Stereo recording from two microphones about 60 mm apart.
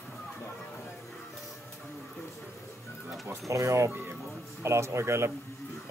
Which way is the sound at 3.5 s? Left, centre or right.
Right.